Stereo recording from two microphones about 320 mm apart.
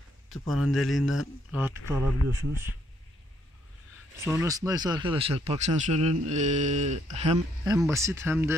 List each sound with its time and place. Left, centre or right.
0.5 s speech: centre
4.2 s speech: centre
7.7 s speech: centre